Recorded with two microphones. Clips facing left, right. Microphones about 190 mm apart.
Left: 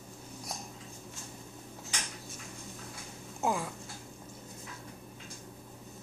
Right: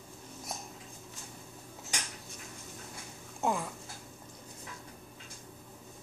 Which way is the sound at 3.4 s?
Centre (ahead or behind).